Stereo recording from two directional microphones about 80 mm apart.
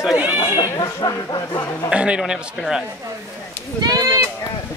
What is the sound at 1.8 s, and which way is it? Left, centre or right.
A man's voice, centre.